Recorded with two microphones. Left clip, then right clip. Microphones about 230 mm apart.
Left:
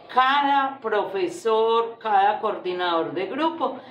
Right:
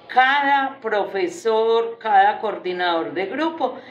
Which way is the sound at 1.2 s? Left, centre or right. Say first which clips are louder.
Right 2 dB; centre.